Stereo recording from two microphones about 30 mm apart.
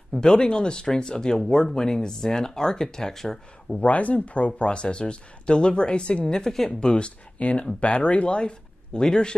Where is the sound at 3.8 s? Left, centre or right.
Left.